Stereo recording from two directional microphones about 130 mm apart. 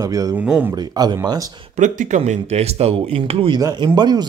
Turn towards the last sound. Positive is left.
turn(degrees=-30)  # may be behind; listen again after turning